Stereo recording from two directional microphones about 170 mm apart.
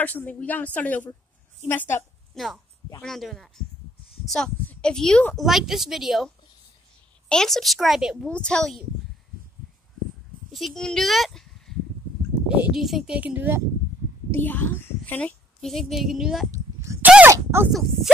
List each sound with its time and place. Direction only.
0.0 s speech: 10° left (ahead or behind)
2.3 s speech: centre (ahead or behind)
10.5 s speech: centre (ahead or behind)
14.3 s a woman's voice: 10° left (ahead or behind)
16.8 s a sound: 15° right (ahead or behind)
17.6 s speech: centre (ahead or behind)